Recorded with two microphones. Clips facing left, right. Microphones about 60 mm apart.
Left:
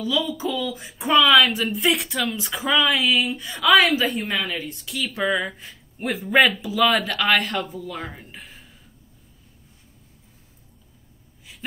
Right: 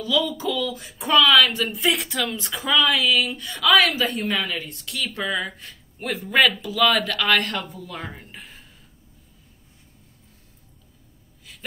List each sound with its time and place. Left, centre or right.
0.0 s speech: left
0.3 s speech: centre